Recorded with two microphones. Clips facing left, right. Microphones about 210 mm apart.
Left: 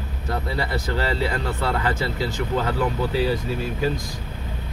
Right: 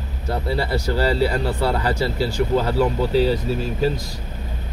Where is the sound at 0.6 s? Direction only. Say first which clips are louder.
Right 5 dB; 35° right (ahead or behind).